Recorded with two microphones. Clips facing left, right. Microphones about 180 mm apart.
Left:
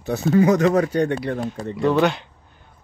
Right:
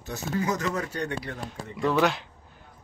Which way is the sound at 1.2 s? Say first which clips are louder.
Left 11 dB; 50° left (ahead or behind).